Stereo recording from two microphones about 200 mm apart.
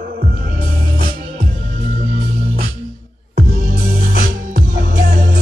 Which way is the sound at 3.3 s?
55° right (ahead or behind).